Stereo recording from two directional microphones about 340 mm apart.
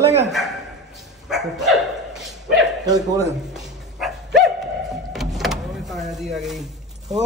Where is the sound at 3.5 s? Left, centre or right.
Centre.